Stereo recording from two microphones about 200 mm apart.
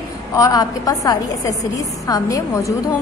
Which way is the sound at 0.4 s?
20° left (ahead or behind).